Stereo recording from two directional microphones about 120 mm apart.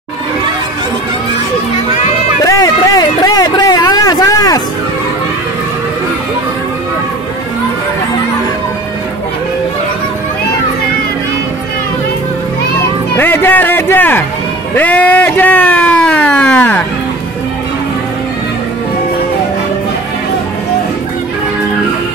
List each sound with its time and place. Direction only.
2.4 s a sound: 30° left (ahead or behind)
13.2 s speech: 15° left (ahead or behind)
14.8 s vehicle: 15° left (ahead or behind)